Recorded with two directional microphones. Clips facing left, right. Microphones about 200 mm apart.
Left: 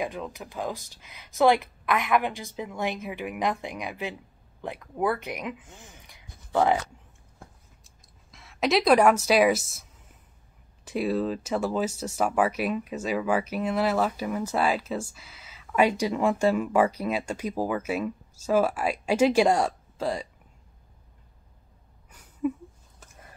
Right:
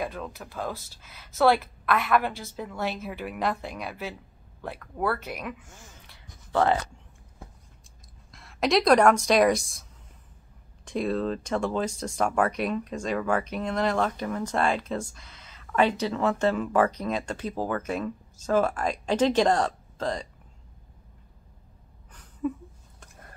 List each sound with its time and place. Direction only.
0.0 s speech: 15° left (ahead or behind)
8.3 s a woman's voice: centre (ahead or behind)
10.9 s speech: 5° left (ahead or behind)
22.1 s a sound: 10° left (ahead or behind)